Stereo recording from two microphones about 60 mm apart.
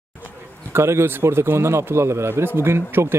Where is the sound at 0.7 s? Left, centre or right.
Right.